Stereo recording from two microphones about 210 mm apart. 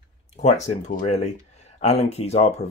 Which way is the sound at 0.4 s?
30° left (ahead or behind).